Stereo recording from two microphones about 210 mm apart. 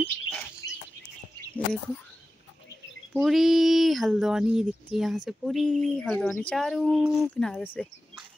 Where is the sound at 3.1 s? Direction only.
Centre (ahead or behind).